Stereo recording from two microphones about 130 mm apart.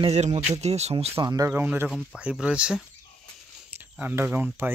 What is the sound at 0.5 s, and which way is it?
Speech, 55° right (ahead or behind).